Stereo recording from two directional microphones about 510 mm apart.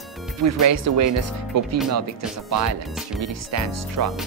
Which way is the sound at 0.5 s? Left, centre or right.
Right.